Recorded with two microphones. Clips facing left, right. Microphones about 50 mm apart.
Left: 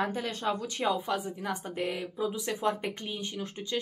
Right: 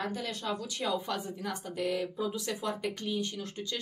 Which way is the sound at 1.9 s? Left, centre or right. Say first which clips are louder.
Even; centre.